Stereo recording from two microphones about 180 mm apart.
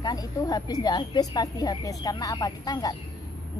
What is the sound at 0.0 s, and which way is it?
A woman's voice, 20° left (ahead or behind).